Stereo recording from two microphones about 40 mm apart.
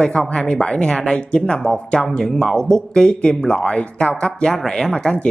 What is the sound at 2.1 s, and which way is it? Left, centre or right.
Speech, centre.